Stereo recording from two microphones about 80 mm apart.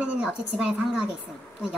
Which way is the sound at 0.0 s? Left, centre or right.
Centre.